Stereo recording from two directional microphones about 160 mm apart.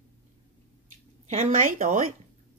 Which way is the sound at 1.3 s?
45° right (ahead or behind).